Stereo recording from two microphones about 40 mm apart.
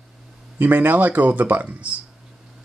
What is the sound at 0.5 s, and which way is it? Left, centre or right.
Speech, right.